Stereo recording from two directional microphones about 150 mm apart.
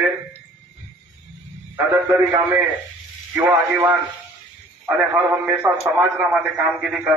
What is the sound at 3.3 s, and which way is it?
Speech, 10° right (ahead or behind).